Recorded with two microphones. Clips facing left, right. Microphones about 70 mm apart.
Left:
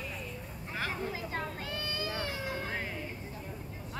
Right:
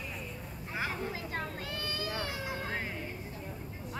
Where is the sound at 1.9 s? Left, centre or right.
Left.